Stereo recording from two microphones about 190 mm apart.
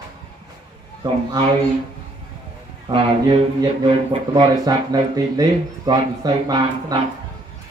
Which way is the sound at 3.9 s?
25° right (ahead or behind).